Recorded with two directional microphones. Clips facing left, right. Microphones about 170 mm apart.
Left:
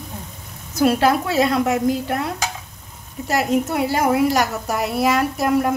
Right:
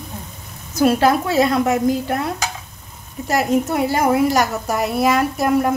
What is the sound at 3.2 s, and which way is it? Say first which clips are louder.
A woman's voice: right 2 dB; 45° right (ahead or behind).